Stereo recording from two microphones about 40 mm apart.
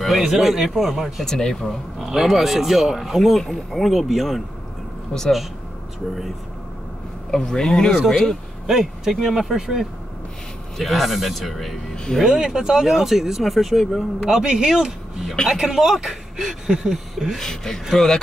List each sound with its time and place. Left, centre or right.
0.0 s speech: centre
1.2 s speech: centre
2.0 s speech: centre
5.1 s speech: left
7.2 s speech: centre
8.6 s speech: centre
10.8 s speech: centre
12.4 s speech: centre
14.2 s speech: centre
17.4 s speech: centre